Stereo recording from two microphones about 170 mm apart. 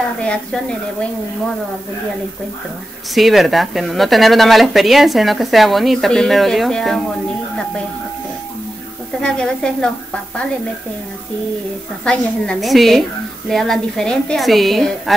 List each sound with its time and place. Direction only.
0.2 s speech: 5° left (ahead or behind)
3.2 s speech: centre (ahead or behind)
9.2 s speech: 5° left (ahead or behind)
12.0 s speech: 5° left (ahead or behind)